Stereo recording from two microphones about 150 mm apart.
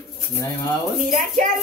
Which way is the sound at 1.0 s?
65° right (ahead or behind).